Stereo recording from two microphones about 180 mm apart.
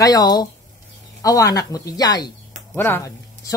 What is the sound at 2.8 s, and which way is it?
Speech, 10° left (ahead or behind).